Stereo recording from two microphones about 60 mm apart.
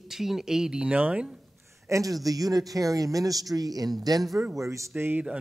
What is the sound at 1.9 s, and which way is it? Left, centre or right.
Speech, right.